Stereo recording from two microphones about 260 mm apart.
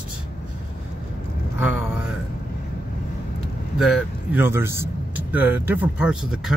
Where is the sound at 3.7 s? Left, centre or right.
Centre.